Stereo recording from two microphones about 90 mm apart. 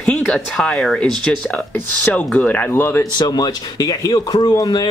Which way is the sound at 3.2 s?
50° left (ahead or behind).